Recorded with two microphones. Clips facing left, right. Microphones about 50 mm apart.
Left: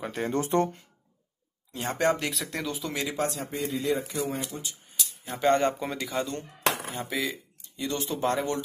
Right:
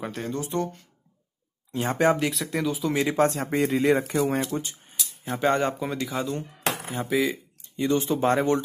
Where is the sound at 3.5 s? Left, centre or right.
Right.